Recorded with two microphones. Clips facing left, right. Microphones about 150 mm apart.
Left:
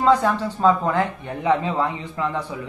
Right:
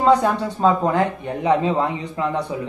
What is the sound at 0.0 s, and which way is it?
Speech, 15° right (ahead or behind).